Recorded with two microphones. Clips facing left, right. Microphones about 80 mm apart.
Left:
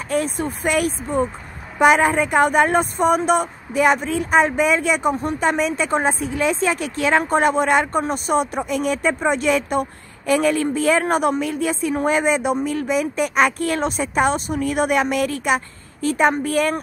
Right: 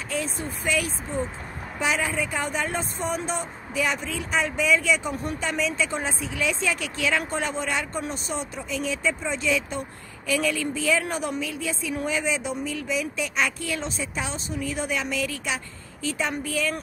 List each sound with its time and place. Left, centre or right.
0.1 s speech: left